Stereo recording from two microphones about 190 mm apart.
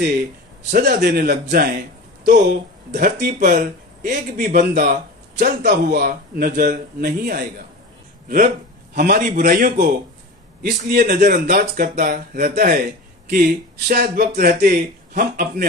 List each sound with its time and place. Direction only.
0.7 s speech: 45° right (ahead or behind)
5.7 s speech: 45° right (ahead or behind)
8.9 s speech: 50° right (ahead or behind)